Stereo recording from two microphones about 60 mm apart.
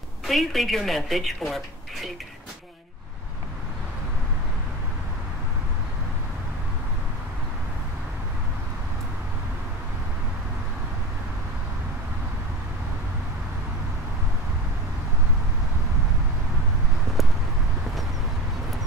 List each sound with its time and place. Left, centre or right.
0.3 s speech: centre